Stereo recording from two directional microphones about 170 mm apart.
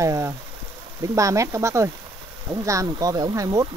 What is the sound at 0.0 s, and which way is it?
Speech, 20° right (ahead or behind).